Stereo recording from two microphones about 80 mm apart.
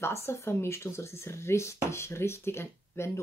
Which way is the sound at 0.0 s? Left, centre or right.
Left.